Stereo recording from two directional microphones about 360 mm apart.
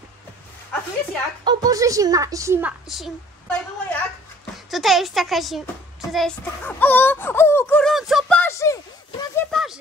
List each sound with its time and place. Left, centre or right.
1.4 s a woman's voice: centre